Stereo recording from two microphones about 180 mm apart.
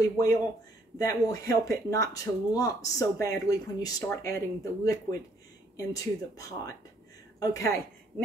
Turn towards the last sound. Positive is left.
turn(degrees=15)  # may be behind; listen again after turning